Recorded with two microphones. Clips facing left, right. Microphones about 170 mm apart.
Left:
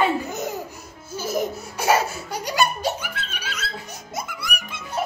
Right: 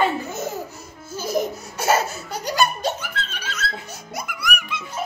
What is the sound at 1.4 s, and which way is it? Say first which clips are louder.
Speech: right 2 dB; 10° left (ahead or behind).